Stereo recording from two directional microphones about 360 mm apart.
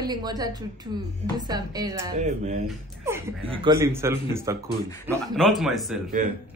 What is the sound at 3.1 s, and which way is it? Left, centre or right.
Speech, centre.